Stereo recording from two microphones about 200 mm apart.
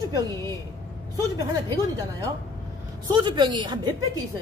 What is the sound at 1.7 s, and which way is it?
Speech, 15° right (ahead or behind).